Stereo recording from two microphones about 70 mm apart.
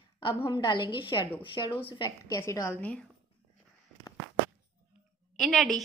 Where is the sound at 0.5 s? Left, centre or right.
Left.